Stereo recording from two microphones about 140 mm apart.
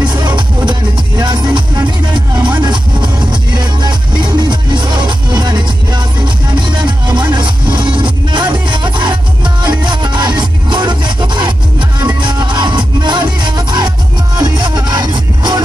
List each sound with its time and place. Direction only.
0.0 s music: 30° right (ahead or behind)